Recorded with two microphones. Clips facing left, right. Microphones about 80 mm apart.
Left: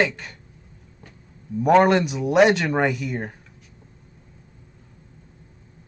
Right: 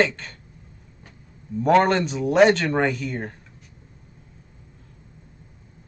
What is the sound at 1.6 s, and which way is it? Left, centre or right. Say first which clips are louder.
Speech: left 2 dB; centre.